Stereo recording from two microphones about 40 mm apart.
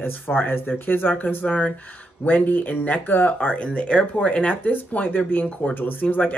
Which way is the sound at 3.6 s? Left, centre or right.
Left.